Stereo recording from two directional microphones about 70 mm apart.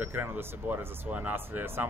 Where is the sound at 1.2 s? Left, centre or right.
Right.